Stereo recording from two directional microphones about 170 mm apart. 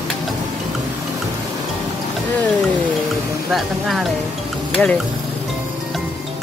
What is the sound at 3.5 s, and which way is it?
Speech, centre (ahead or behind).